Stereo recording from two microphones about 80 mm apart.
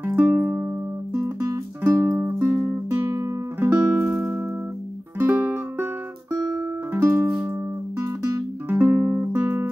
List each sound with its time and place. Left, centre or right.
0.3 s music: centre
1.2 s music: right
1.8 s music: right
8.6 s music: right